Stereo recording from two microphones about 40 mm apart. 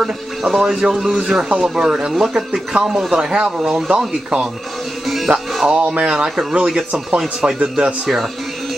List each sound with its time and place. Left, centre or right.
0.0 s speech: centre
5.0 s music: centre
5.6 s speech: right